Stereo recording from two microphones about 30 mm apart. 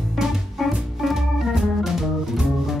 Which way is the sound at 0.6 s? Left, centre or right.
Centre.